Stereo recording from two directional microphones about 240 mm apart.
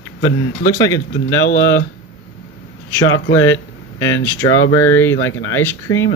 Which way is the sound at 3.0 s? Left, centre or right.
Left.